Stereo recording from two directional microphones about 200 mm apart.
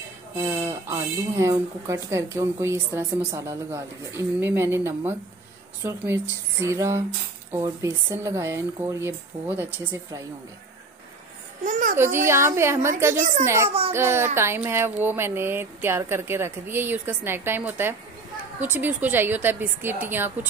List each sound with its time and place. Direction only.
0.4 s speech: 15° right (ahead or behind)
11.6 s a child's voice: 40° right (ahead or behind)
12.0 s speech: 10° right (ahead or behind)
13.2 s a child's voice: 40° right (ahead or behind)
13.9 s speech: 10° right (ahead or behind)